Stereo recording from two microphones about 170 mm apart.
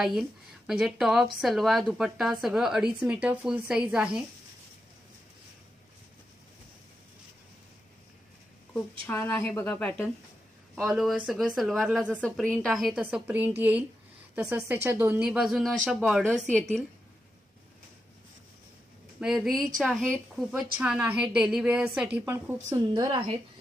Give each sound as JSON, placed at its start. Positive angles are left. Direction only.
{"t": 0.0, "sound": "a woman's voice", "side_deg": 0}
{"t": 9.0, "sound": "a woman's voice", "side_deg": 10}
{"t": 19.1, "sound": "a woman's voice", "side_deg": -5}